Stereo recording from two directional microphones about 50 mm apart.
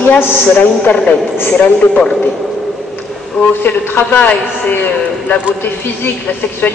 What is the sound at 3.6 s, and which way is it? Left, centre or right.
A man's voice, left.